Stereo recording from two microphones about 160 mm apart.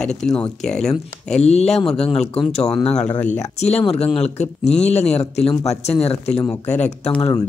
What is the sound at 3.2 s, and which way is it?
Speech, 45° left (ahead or behind).